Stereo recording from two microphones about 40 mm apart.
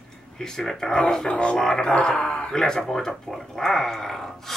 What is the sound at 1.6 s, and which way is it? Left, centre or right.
A man's voice, centre.